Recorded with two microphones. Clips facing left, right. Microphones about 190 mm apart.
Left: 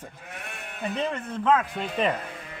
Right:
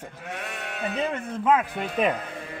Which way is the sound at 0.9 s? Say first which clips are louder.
Even; 10° right (ahead or behind).